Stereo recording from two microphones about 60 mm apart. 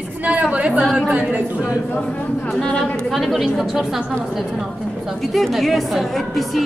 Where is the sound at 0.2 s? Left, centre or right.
Right.